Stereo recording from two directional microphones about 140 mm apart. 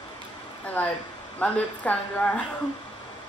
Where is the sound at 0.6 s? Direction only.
10° left (ahead or behind).